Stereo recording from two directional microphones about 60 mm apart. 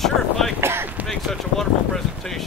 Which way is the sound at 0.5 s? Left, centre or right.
Right.